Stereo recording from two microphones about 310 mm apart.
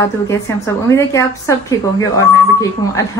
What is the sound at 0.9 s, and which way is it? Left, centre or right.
Speech, centre.